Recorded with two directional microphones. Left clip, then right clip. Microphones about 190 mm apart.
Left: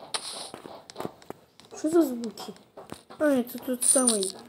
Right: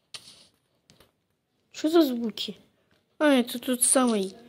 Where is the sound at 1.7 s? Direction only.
30° right (ahead or behind).